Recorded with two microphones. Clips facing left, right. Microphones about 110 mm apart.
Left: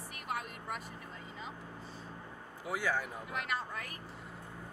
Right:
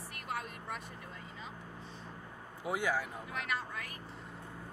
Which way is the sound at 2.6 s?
20° right (ahead or behind).